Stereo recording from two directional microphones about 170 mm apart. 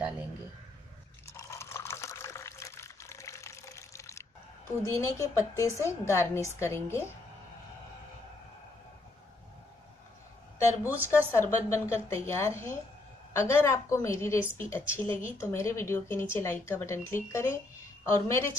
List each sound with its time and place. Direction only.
1.2 s liquid: 20° left (ahead or behind)
4.8 s speech: 15° left (ahead or behind)
11.1 s speech: 15° left (ahead or behind)